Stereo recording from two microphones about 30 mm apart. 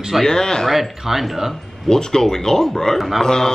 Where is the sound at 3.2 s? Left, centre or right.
Centre.